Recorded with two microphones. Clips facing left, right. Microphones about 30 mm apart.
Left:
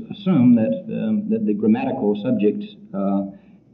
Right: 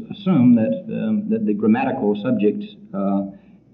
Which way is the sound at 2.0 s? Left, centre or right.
Right.